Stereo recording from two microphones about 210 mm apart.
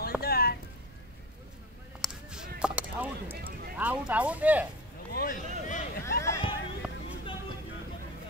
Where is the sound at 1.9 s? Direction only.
Centre (ahead or behind).